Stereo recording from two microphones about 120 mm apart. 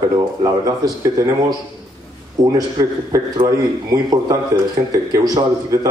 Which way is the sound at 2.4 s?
30° right (ahead or behind).